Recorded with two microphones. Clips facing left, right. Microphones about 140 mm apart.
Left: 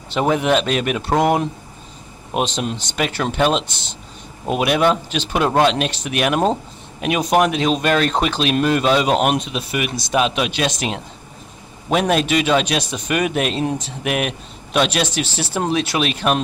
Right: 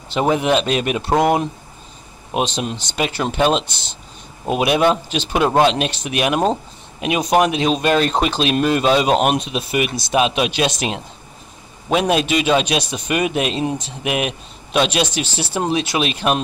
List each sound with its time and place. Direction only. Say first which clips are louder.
0.1 s speech: even; 20° right (ahead or behind)
2.6 s a man's voice: even; 25° right (ahead or behind)